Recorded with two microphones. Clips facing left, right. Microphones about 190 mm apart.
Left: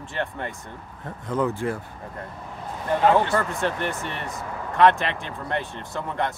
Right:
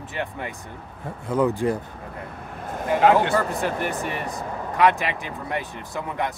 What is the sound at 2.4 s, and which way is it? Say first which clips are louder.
Speech: right 5 dB; 55° right (ahead or behind).